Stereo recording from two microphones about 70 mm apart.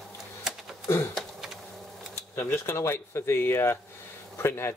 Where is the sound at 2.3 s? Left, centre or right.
Left.